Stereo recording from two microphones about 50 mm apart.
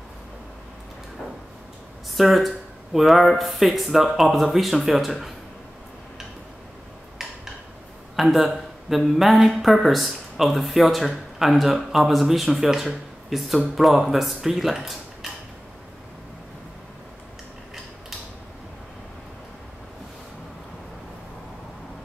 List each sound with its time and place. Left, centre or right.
2.1 s speech: centre
8.2 s speech: centre